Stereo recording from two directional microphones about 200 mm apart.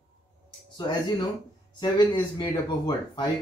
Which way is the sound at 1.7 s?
20° left (ahead or behind).